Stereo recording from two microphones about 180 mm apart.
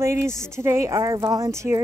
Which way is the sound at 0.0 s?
15° right (ahead or behind).